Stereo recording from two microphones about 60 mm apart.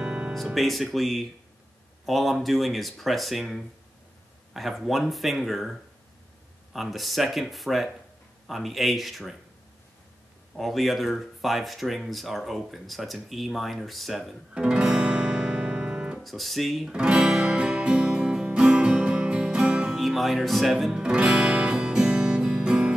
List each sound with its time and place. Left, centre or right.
0.0 s music: centre
0.6 s speech: centre
10.5 s speech: centre
14.5 s guitar: centre
16.2 s speech: centre
16.9 s music: centre
20.0 s speech: centre
20.9 s music: centre